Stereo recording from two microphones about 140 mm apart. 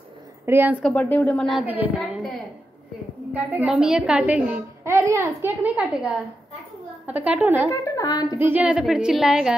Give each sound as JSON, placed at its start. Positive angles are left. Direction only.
{"t": 0.5, "sound": "a woman's voice", "side_deg": -15}
{"t": 0.8, "sound": "speech", "side_deg": 10}
{"t": 1.5, "sound": "a woman's voice", "side_deg": -10}
{"t": 3.6, "sound": "a woman's voice", "side_deg": -5}
{"t": 4.8, "sound": "a child's voice", "side_deg": -20}
{"t": 7.7, "sound": "a woman's voice", "side_deg": 25}
{"t": 8.4, "sound": "a woman's voice", "side_deg": -10}